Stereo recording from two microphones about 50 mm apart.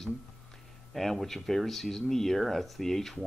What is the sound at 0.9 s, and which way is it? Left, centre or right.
Speech, centre.